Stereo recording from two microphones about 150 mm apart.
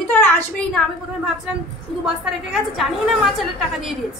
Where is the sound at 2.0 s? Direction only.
Centre (ahead or behind).